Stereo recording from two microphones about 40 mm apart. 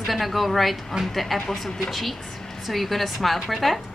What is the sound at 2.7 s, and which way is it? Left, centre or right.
A woman's voice, centre.